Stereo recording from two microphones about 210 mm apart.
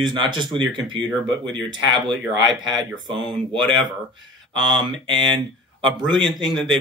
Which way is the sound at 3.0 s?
20° right (ahead or behind).